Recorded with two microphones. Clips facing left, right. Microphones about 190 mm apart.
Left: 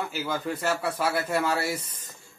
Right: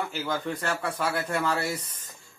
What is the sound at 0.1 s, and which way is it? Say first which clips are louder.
Speech: even; 5° left (ahead or behind).